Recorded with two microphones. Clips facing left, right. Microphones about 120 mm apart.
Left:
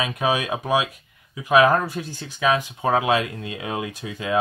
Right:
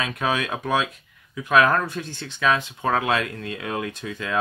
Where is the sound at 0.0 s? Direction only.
15° left (ahead or behind).